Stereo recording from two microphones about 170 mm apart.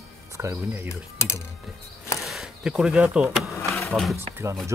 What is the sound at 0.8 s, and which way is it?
Mechanisms, 15° left (ahead or behind).